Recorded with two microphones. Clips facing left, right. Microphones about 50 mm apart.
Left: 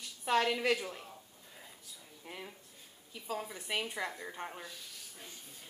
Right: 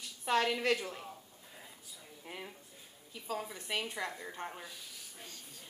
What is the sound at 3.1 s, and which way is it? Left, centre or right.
A woman's voice, centre.